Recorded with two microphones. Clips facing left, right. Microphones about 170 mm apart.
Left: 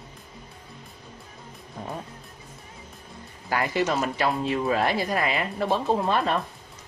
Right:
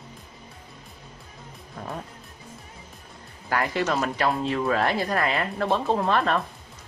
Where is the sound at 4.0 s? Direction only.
20° left (ahead or behind).